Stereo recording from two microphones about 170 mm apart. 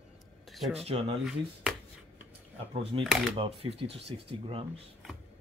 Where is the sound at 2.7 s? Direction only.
35° right (ahead or behind).